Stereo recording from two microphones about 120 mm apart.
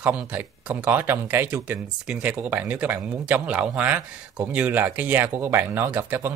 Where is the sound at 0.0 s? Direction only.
10° right (ahead or behind).